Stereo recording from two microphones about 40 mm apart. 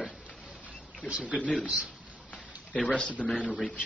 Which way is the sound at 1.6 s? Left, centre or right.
Right.